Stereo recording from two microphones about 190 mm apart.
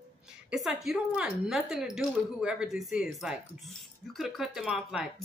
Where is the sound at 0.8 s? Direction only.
Centre (ahead or behind).